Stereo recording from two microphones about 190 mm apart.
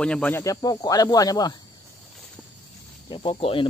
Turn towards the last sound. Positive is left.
turn(degrees=25)  # may be behind; listen again after turning